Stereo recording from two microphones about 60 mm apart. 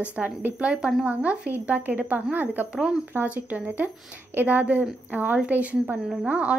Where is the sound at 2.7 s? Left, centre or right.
Centre.